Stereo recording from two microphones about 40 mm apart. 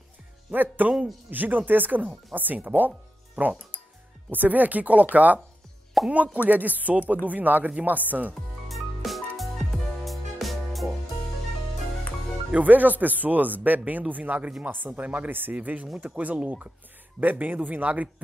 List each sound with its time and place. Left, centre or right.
0.5 s speech: right
4.3 s speech: right
8.6 s music: centre
12.5 s speech: right
15.5 s speech: right